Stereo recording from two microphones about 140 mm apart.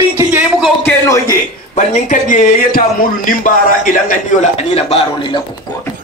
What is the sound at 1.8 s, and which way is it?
A man's voice, 60° left (ahead or behind).